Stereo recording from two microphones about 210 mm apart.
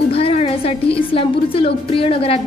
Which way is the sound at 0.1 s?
30° left (ahead or behind).